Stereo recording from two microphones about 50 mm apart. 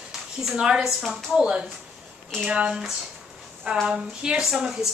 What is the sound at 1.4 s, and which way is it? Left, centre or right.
Speech, centre.